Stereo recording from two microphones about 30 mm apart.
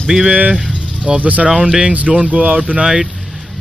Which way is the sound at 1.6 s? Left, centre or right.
Right.